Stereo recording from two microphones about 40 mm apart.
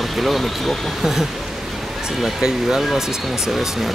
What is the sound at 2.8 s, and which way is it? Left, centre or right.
Speech, centre.